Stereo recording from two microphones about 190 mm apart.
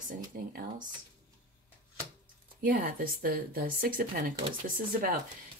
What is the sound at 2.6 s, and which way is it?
Speech, 50° right (ahead or behind).